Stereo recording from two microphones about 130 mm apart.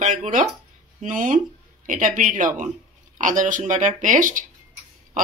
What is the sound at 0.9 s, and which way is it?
Speech, 80° right.